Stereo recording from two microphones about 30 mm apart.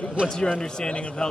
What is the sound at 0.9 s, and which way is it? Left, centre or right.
Speech, left.